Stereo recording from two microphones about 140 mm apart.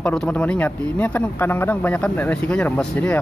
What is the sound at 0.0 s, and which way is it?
Speech, 5° left (ahead or behind).